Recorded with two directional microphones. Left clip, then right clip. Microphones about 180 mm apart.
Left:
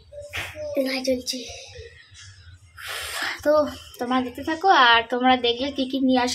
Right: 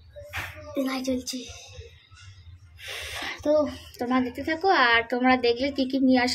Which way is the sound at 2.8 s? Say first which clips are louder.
Left 5 dB; 40° left (ahead or behind).